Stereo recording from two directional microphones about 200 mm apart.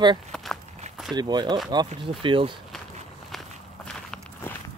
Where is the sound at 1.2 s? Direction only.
20° right (ahead or behind).